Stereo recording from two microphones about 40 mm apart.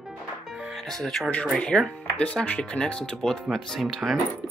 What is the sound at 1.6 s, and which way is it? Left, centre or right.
Speech, left.